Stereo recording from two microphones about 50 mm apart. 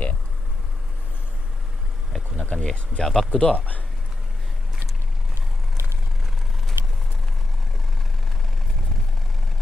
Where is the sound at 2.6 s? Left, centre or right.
Centre.